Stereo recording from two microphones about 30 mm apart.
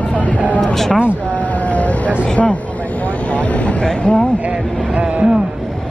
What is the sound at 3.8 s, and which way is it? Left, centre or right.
Speech, left.